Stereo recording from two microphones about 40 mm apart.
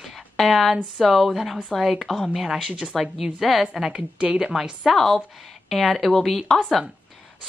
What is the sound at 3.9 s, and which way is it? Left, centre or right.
Speech, right.